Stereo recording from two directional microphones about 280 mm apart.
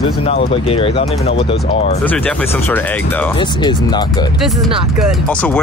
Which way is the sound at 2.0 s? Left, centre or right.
Centre.